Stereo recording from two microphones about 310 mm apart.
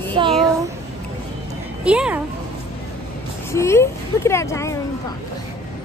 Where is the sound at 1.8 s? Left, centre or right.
Centre.